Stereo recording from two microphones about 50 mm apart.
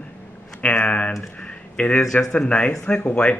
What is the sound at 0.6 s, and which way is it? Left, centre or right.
Speech, left.